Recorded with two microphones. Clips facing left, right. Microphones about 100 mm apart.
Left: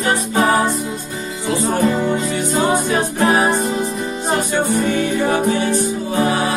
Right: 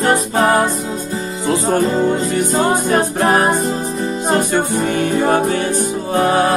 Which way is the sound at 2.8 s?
45° right (ahead or behind).